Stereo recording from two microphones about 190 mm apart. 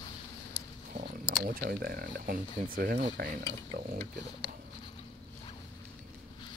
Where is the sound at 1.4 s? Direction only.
50° right (ahead or behind).